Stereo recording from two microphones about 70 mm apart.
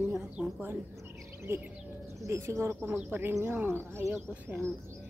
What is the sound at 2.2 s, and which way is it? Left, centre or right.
Speech, right.